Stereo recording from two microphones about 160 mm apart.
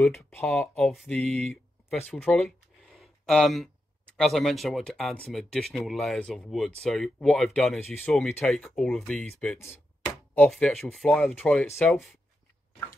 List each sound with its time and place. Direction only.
0.3 s speech: 5° left (ahead or behind)
10.3 s speech: 10° left (ahead or behind)
11.6 s speech: 15° left (ahead or behind)